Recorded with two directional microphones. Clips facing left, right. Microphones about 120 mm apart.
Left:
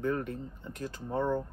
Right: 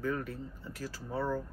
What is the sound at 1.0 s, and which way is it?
Speech, 25° left (ahead or behind).